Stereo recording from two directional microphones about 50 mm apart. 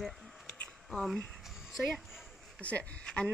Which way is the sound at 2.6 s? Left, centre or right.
Left.